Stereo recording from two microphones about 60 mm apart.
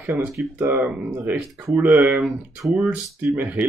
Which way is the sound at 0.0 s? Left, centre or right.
Right.